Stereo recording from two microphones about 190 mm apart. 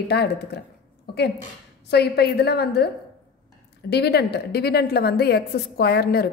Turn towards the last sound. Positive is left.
turn(degrees=55)  # may be behind; listen again after turning